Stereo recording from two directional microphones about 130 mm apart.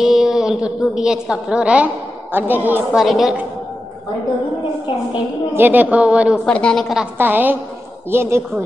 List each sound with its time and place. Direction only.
0.0 s a woman's voice: 5° right (ahead or behind)
3.0 s a woman's voice: centre (ahead or behind)
5.5 s a woman's voice: 15° right (ahead or behind)
6.4 s a woman's voice: 5° left (ahead or behind)
7.2 s a woman's voice: 15° right (ahead or behind)